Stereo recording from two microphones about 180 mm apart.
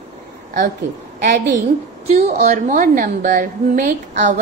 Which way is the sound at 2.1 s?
40° right (ahead or behind).